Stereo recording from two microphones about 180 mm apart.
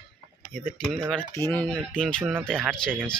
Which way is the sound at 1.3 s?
15° left (ahead or behind).